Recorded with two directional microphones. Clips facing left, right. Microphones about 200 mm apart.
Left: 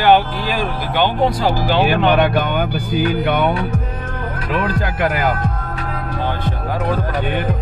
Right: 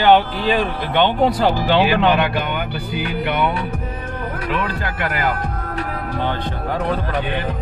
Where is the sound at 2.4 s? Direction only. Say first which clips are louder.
Left 4 dB; 45° left (ahead or behind).